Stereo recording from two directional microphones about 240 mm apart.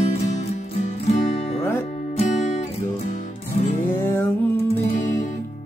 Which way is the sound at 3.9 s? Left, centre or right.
Centre.